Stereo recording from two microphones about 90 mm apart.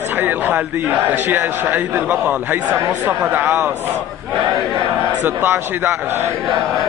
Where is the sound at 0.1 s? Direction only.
20° right (ahead or behind).